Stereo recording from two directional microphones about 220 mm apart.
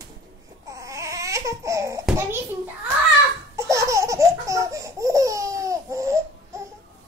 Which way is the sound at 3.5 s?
15° right (ahead or behind).